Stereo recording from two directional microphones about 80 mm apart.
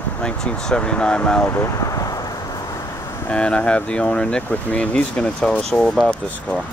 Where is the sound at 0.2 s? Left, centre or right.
Centre.